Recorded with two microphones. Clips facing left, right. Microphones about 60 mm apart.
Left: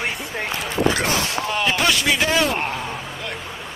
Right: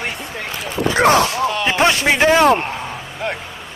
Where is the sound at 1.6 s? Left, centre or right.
Right.